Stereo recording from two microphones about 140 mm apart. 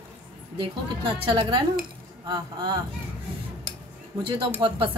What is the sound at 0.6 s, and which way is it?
A woman's voice, 35° right (ahead or behind).